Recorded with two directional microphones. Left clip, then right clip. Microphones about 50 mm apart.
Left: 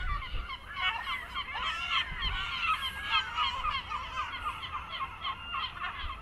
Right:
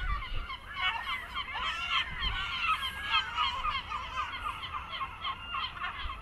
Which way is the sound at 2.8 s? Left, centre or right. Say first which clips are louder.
Even; centre.